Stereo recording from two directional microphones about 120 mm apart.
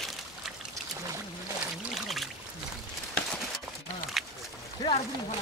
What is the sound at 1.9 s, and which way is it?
Pour, centre (ahead or behind).